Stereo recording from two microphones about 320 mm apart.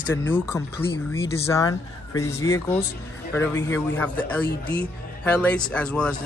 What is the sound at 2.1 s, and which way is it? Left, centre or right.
Speech, left.